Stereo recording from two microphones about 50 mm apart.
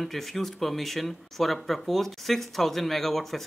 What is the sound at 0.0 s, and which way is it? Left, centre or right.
Speech, centre.